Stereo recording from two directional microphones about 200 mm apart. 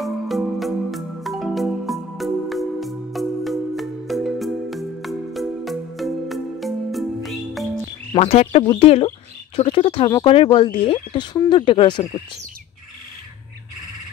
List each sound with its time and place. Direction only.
0.0 s music: centre (ahead or behind)
8.1 s speech: 30° left (ahead or behind)